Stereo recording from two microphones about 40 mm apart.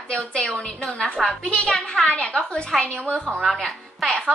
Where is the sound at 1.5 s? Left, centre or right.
Left.